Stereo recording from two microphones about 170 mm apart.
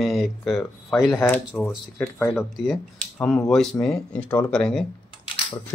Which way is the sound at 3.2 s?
15° left (ahead or behind).